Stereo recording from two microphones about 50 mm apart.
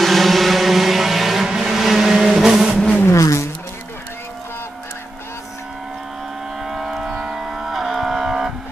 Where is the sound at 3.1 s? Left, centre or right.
Left.